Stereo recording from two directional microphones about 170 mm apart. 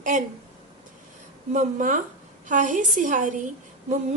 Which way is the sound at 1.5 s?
50° right (ahead or behind).